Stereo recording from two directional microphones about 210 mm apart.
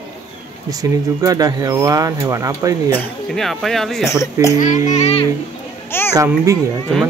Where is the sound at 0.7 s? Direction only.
15° right (ahead or behind).